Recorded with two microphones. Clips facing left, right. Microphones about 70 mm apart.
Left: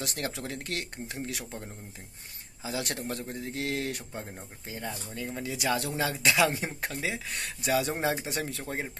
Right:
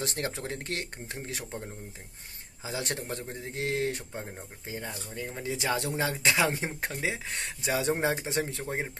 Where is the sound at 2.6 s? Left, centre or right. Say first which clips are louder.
Left 1 dB; right.